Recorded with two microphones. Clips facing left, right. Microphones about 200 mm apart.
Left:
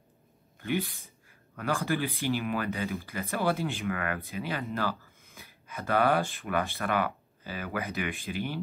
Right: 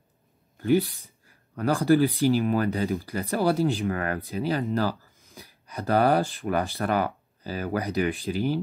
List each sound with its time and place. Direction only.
0.6 s speech: 35° right (ahead or behind)